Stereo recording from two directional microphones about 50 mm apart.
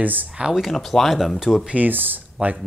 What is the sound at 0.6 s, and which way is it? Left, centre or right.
Speech, centre.